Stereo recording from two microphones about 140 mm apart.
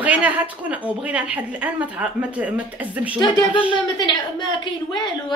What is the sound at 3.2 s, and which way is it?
A woman's voice, 35° left (ahead or behind).